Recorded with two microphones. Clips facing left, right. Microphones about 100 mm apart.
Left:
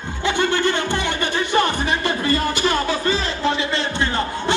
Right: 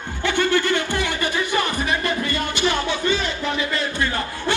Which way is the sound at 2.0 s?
35° left (ahead or behind).